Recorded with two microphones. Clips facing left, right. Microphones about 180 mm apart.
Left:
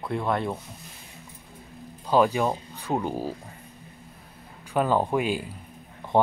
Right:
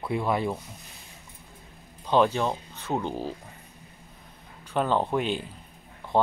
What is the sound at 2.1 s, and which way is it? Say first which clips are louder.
Speech: left 1 dB; 5° left (ahead or behind).